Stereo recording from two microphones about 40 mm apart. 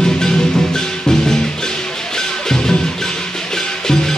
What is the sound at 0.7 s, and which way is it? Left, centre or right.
Music, centre.